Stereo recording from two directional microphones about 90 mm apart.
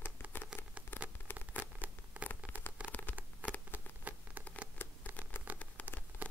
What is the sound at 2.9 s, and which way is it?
Patter, 20° left (ahead or behind).